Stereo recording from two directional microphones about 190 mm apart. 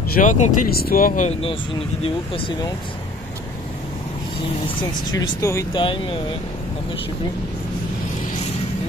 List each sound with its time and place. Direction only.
0.1 s speech: 40° left (ahead or behind)
5.1 s speech: 15° left (ahead or behind)